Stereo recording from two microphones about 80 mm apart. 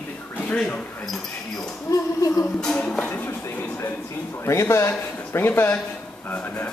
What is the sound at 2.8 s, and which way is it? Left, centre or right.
Speech, centre.